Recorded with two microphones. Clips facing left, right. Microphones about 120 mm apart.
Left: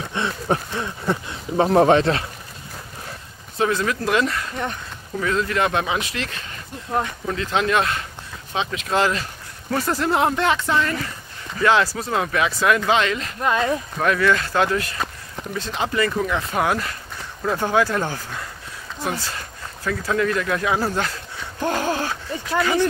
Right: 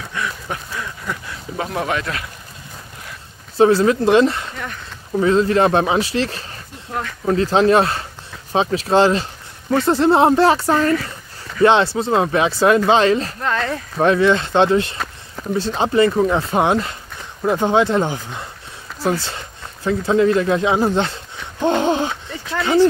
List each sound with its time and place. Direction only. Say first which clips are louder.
0.1 s speech: left 4 dB; 30° left (ahead or behind)
3.5 s speech: right 8 dB; 30° right (ahead or behind)
6.9 s speech: left 3 dB; 25° left (ahead or behind)
7.2 s speech: right 13 dB; 35° right (ahead or behind)
11.6 s speech: right 5 dB; 25° right (ahead or behind)
13.4 s speech: left 1 dB; 15° left (ahead or behind)
13.9 s speech: right 7 dB; 25° right (ahead or behind)